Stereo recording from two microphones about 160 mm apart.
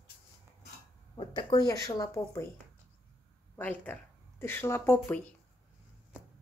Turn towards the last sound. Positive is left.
turn(degrees=10)  # may be behind; listen again after turning